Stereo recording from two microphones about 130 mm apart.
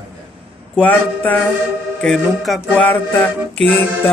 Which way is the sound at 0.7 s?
10° left (ahead or behind).